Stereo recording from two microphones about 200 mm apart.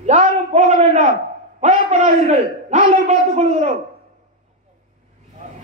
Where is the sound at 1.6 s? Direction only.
35° right (ahead or behind).